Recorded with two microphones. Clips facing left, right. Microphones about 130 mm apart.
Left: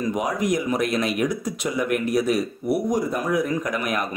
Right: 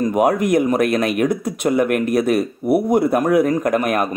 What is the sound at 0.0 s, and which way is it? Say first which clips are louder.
Speech: right 8 dB; 60° right (ahead or behind).